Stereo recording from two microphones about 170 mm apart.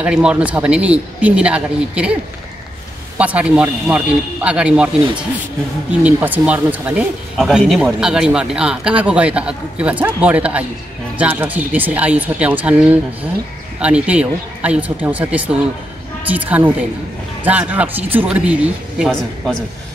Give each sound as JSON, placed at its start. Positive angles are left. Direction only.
{"t": 0.0, "sound": "speech", "side_deg": -5}
{"t": 3.2, "sound": "speech", "side_deg": -10}
{"t": 6.0, "sound": "speech", "side_deg": -10}